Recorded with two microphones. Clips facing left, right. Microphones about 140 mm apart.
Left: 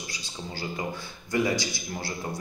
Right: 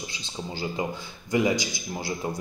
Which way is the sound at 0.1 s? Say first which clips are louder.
Right 3 dB; 20° right (ahead or behind).